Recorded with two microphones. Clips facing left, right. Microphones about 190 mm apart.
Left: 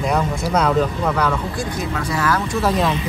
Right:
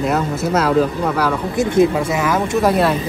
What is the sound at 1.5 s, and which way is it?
Speech, 25° right (ahead or behind).